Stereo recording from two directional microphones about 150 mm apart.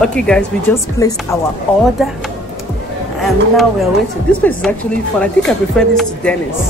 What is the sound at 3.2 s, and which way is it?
A woman's voice, centre (ahead or behind).